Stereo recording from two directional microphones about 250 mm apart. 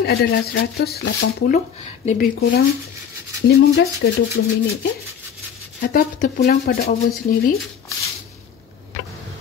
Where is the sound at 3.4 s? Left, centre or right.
Left.